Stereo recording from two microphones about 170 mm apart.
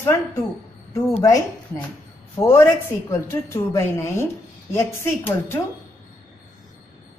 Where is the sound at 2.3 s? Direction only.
15° left (ahead or behind).